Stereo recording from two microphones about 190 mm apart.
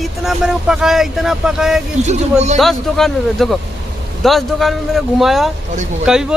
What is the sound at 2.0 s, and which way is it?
Speech, 35° right (ahead or behind).